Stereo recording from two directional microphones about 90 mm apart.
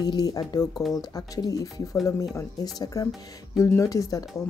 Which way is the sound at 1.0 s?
45° left (ahead or behind).